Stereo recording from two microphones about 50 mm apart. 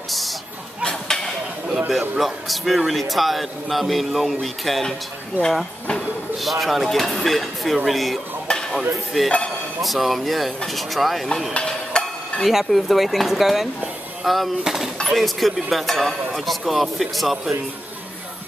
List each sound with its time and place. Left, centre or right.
0.8 s a sound: centre
1.7 s speech: centre
5.4 s speech: right
6.4 s speech: centre
11.5 s stir: centre
12.4 s speech: centre
15.0 s speech: centre